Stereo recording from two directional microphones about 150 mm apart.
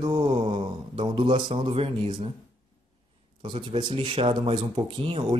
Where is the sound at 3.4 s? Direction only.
35° right (ahead or behind).